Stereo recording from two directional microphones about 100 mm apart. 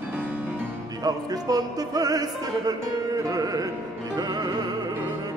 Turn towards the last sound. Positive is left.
turn(degrees=-40)  # may be behind; listen again after turning